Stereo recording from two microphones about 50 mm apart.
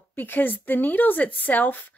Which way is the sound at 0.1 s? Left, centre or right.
Left.